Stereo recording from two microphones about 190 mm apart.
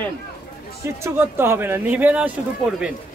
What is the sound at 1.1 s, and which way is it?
Speech, 10° right (ahead or behind).